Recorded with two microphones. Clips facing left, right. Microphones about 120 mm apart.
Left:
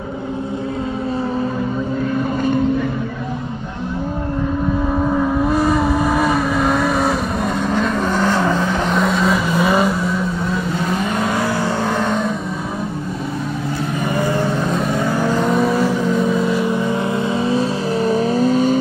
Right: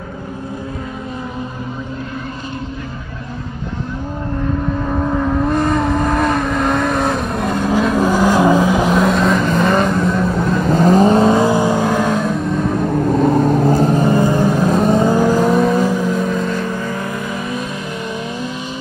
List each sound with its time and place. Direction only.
4.9 s vehicle: centre (ahead or behind)
10.7 s vehicle: 40° right (ahead or behind); by 12.4 s 5° right (ahead or behind)
13.1 s vehicle: 50° right (ahead or behind); by 14.6 s 15° right (ahead or behind)
14.8 s vehicle: 35° right (ahead or behind)
15.0 s vehicle: 15° right (ahead or behind)
15.8 s vehicle: 15° right (ahead or behind)
16.1 s vehicle: 5° left (ahead or behind)
17.5 s vehicle: 35° left (ahead or behind)